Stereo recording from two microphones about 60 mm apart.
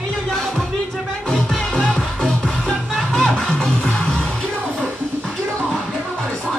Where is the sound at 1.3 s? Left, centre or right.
Centre.